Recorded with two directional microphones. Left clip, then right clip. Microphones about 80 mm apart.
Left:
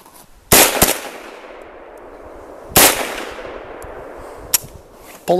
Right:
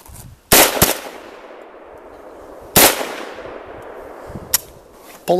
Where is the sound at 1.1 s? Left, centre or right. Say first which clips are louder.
Left 2 dB; left.